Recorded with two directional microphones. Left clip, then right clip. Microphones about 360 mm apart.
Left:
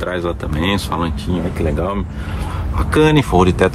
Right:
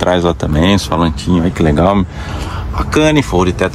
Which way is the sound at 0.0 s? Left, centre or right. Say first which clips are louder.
Right 8 dB; centre.